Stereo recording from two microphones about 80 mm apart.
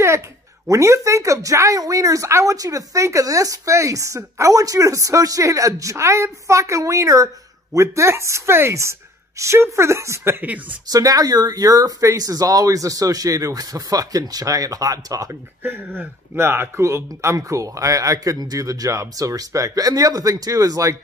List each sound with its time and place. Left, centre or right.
0.7 s speech: right
10.9 s speech: right
15.6 s speech: right